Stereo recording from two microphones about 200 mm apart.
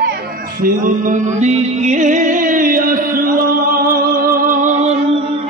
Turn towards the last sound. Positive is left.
turn(degrees=-35)  # may be behind; listen again after turning